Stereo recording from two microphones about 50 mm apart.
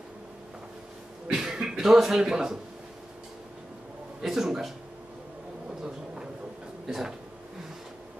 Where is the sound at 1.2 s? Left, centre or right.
Centre.